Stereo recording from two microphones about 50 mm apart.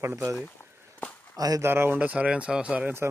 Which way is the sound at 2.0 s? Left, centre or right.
Right.